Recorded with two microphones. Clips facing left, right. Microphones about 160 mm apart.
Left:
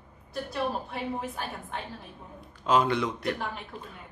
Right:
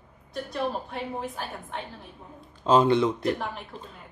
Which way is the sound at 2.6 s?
25° right (ahead or behind).